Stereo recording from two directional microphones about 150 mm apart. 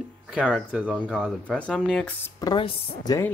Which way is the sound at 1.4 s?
10° left (ahead or behind).